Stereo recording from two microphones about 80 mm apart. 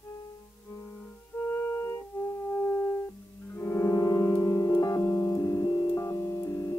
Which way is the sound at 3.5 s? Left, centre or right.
Left.